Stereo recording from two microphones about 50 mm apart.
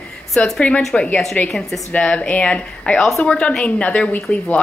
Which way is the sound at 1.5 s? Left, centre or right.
Centre.